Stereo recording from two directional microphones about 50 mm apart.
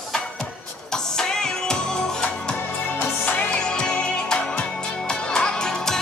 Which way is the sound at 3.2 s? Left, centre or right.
Left.